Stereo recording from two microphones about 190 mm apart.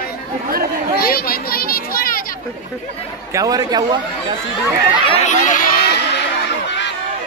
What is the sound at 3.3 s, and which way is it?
A man's voice, 20° right (ahead or behind).